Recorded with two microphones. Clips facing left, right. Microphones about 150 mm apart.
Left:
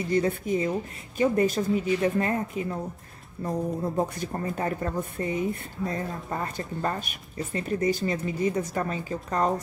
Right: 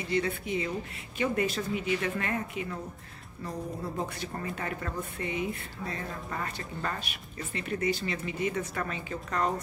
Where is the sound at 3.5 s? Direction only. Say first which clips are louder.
Left 7 dB; 45° left (ahead or behind).